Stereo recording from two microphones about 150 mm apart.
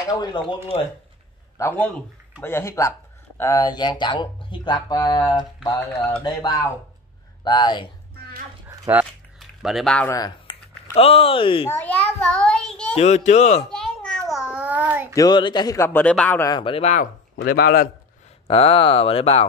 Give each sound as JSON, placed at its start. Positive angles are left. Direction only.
{"t": 1.6, "sound": "speech", "side_deg": 10}
{"t": 8.9, "sound": "speech", "side_deg": -15}
{"t": 9.4, "sound": "speech", "side_deg": 0}
{"t": 10.0, "sound": "speech", "side_deg": 25}
{"t": 11.0, "sound": "speech", "side_deg": 40}
{"t": 11.7, "sound": "a child's voice", "side_deg": 10}
{"t": 12.9, "sound": "a child's voice", "side_deg": 50}
{"t": 13.7, "sound": "babbling", "side_deg": 5}
{"t": 14.3, "sound": "a sound", "side_deg": -5}
{"t": 15.1, "sound": "speech", "side_deg": 30}
{"t": 16.4, "sound": "speech", "side_deg": 30}
{"t": 16.8, "sound": "a child's voice", "side_deg": 55}
{"t": 17.4, "sound": "speech", "side_deg": 90}
{"t": 18.5, "sound": "speech", "side_deg": 35}